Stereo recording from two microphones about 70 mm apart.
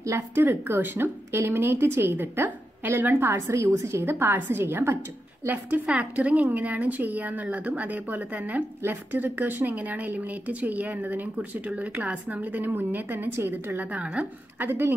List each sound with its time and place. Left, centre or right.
0.3 s a woman's voice: right
5.9 s a woman's voice: centre
14.7 s a woman's voice: right